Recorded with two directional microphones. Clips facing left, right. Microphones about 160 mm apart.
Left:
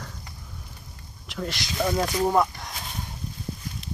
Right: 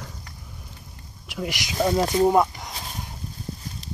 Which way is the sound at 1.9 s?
30° right (ahead or behind).